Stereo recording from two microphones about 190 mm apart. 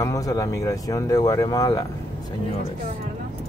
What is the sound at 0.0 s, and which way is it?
Speech, 20° left (ahead or behind).